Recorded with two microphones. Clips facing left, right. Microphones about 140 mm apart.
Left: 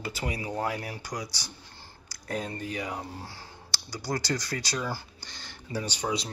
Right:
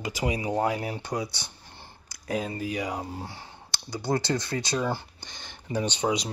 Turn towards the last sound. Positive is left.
turn(degrees=-20)  # may be behind; listen again after turning